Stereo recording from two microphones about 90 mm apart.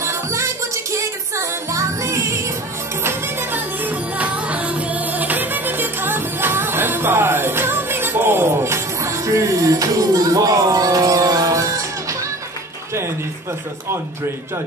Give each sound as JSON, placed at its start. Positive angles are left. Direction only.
{"t": 0.0, "sound": "music", "side_deg": -35}